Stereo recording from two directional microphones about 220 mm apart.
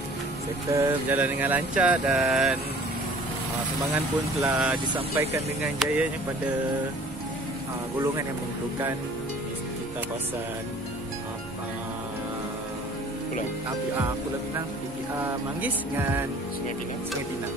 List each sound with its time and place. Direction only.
0.7 s speech: 10° right (ahead or behind)
4.4 s speech: 10° right (ahead or behind)
15.1 s speech: 10° right (ahead or behind)